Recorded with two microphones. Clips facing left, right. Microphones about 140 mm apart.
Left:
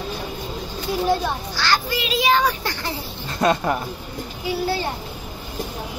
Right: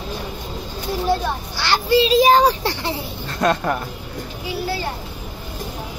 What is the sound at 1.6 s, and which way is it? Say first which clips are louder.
A child's voice: right 7 dB; 25° right (ahead or behind).